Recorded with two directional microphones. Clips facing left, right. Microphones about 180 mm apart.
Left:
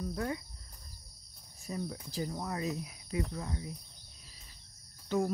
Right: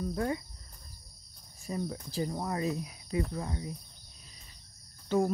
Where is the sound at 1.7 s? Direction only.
35° right (ahead or behind).